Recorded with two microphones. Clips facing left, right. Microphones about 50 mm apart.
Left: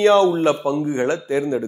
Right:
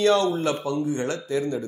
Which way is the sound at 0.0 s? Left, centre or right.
Left.